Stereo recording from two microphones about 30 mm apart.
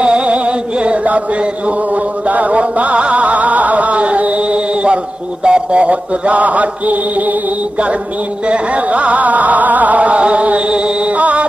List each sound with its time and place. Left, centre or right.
0.0 s music: right
2.2 s music: right
8.5 s music: right